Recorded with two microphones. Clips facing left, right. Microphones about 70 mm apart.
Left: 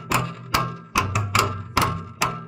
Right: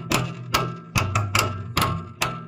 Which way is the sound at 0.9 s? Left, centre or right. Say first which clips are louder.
Left 2 dB; centre.